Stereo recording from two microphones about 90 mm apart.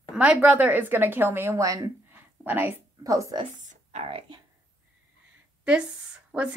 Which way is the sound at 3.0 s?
40° right (ahead or behind).